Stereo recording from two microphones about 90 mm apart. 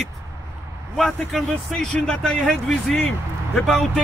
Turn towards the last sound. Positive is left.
turn(degrees=5)  # may be behind; listen again after turning